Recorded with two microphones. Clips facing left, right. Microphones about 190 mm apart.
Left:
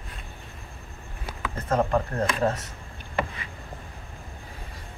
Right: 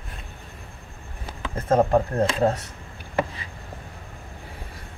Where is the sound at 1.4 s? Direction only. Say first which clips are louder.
Right 5 dB; 30° right (ahead or behind).